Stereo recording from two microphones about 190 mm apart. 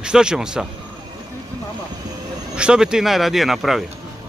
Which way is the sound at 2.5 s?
5° right (ahead or behind).